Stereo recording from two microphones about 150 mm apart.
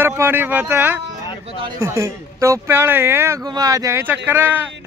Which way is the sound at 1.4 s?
35° right (ahead or behind).